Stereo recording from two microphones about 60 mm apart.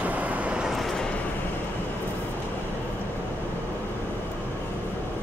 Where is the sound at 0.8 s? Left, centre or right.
Centre.